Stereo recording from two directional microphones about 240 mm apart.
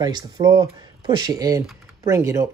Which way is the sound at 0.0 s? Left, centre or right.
Centre.